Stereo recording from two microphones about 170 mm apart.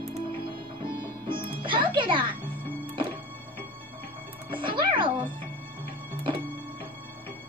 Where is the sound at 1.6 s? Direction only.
30° right (ahead or behind).